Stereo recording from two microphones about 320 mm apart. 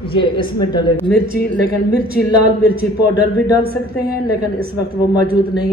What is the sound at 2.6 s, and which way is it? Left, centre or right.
A man's voice, right.